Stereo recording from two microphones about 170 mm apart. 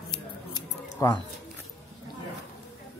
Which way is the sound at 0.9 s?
20° left (ahead or behind).